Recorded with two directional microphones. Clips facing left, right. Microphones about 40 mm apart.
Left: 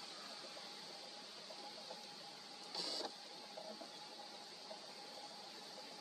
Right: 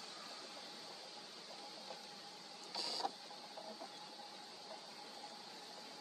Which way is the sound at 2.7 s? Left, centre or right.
Right.